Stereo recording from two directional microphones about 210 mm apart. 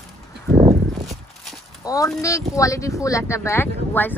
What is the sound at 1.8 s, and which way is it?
Speech, 15° left (ahead or behind).